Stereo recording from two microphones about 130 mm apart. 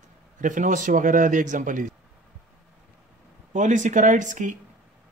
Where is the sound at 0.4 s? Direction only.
85° right.